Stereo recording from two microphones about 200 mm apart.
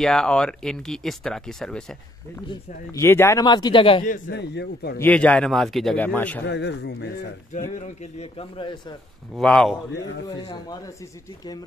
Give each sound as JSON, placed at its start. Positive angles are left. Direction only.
{"t": 0.0, "sound": "speech", "side_deg": 5}
{"t": 2.4, "sound": "speech", "side_deg": 20}
{"t": 4.0, "sound": "a man's voice", "side_deg": 50}
{"t": 4.9, "sound": "a man's voice", "side_deg": 10}
{"t": 6.4, "sound": "a man's voice", "side_deg": 60}
{"t": 8.0, "sound": "speech", "side_deg": 30}
{"t": 9.3, "sound": "speech", "side_deg": 5}
{"t": 10.2, "sound": "speech", "side_deg": 20}